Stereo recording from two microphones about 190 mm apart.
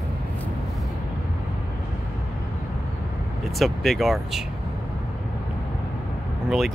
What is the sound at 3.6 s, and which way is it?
Speech, centre (ahead or behind).